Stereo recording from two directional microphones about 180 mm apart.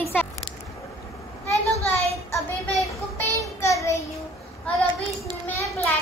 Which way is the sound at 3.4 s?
15° left (ahead or behind).